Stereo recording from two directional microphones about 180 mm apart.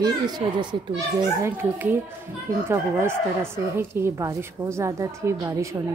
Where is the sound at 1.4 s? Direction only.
10° right (ahead or behind).